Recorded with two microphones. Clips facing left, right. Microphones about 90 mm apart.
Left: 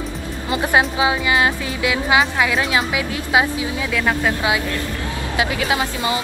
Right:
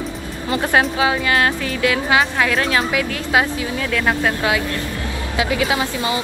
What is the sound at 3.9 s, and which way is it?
Speech, centre (ahead or behind).